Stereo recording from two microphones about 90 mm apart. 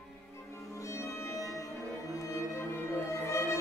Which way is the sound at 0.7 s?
35° left (ahead or behind).